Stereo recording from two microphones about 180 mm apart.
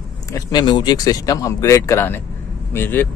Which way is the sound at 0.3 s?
25° left (ahead or behind).